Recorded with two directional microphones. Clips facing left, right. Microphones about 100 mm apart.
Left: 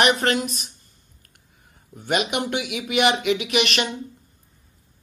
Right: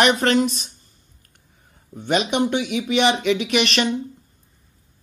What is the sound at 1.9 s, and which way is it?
Speech, 30° right (ahead or behind).